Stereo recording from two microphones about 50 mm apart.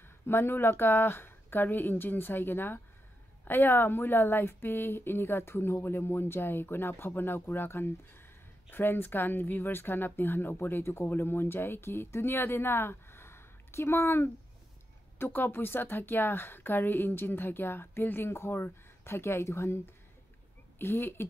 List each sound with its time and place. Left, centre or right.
0.3 s a woman's voice: left
15.1 s a woman's voice: left
20.8 s a woman's voice: left